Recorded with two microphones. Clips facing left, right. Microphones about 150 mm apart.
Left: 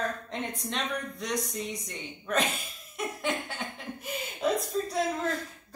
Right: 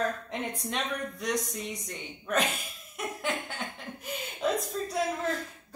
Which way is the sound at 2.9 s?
Centre (ahead or behind).